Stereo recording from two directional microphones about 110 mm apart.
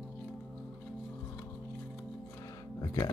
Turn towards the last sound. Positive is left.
turn(degrees=30)  # may be behind; listen again after turning